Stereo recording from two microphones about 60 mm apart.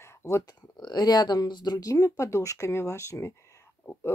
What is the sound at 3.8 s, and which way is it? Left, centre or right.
Speech, left.